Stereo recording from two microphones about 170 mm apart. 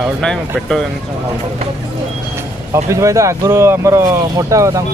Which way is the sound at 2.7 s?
20° right (ahead or behind).